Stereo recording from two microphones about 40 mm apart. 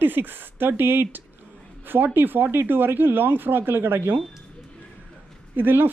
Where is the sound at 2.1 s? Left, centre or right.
Right.